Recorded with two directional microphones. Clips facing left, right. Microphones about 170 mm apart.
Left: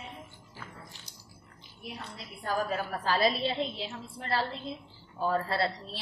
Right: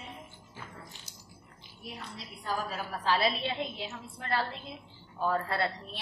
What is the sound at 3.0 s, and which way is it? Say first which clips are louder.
A woman's voice: left 1 dB; 40° left (ahead or behind).